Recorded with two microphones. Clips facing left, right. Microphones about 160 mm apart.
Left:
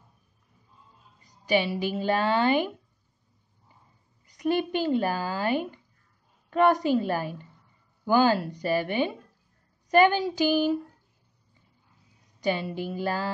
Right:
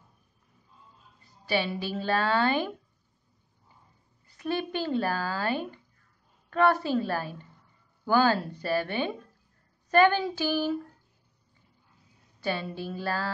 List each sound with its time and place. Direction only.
1.2 s a woman's voice: 15° left (ahead or behind)
4.3 s speech: 15° left (ahead or behind)
12.4 s speech: 15° left (ahead or behind)